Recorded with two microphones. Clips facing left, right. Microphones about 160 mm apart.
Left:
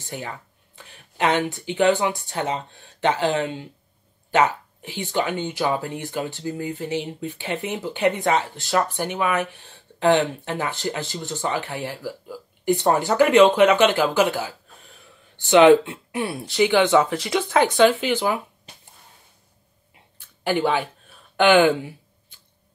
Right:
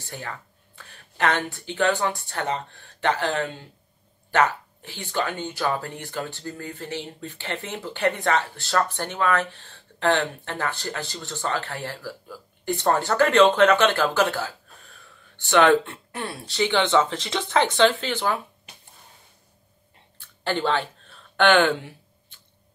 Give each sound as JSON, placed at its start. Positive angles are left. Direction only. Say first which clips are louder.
{"t": 0.0, "sound": "speech", "louder": "left 3 dB", "side_deg": 15}
{"t": 15.5, "sound": "speech", "louder": "left 5 dB", "side_deg": 15}
{"t": 20.4, "sound": "speech", "louder": "left 3 dB", "side_deg": 10}